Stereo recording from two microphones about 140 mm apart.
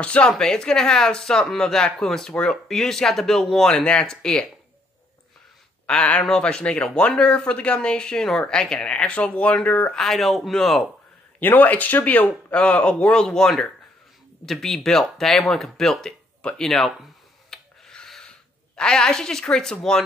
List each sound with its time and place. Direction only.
0.0 s speech: 5° left (ahead or behind)
5.9 s speech: 10° left (ahead or behind)
11.3 s speech: 10° left (ahead or behind)